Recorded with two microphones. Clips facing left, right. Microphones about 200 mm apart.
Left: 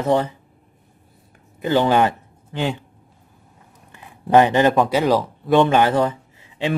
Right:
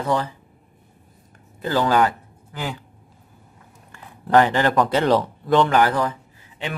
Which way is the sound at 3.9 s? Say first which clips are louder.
Left 2 dB; 20° left (ahead or behind).